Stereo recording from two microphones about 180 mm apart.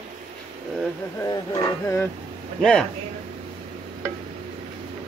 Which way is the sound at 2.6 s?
5° left (ahead or behind).